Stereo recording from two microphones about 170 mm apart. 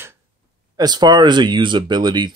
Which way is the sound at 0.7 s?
25° right (ahead or behind).